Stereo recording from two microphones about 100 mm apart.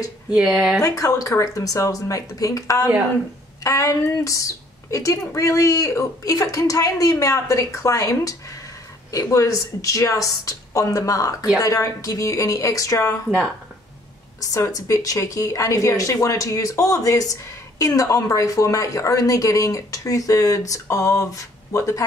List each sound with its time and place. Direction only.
0.3 s speech: 10° right (ahead or behind)
0.7 s speech: 35° left (ahead or behind)
14.4 s speech: 35° left (ahead or behind)